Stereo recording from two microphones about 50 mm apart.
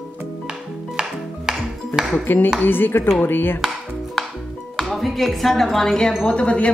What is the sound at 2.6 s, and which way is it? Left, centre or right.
Speech, left.